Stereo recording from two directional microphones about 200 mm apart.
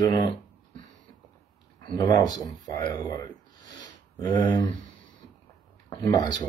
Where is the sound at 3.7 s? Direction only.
20° left (ahead or behind).